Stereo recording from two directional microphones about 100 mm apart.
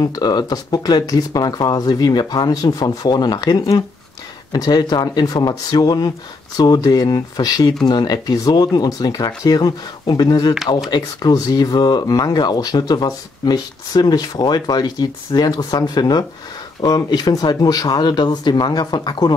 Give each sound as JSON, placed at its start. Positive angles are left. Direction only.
{"t": 0.0, "sound": "speech", "side_deg": 45}